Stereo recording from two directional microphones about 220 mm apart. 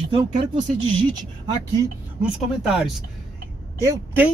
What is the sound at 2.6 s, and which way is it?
Speech, 5° right (ahead or behind).